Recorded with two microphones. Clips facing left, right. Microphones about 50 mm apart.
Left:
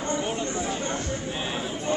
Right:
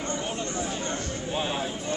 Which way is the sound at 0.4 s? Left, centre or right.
Centre.